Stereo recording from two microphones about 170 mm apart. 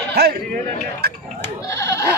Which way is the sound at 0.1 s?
70° right (ahead or behind).